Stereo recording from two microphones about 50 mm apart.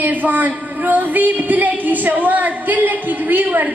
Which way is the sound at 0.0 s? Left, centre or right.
Right.